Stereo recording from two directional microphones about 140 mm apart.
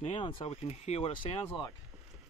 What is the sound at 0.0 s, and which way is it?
Speech, 35° left (ahead or behind).